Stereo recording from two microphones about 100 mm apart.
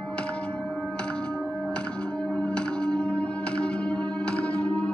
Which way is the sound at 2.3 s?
10° left (ahead or behind).